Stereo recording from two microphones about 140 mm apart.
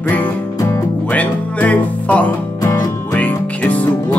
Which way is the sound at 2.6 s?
20° left (ahead or behind).